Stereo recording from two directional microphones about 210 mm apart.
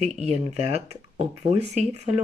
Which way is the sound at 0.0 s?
30° right (ahead or behind).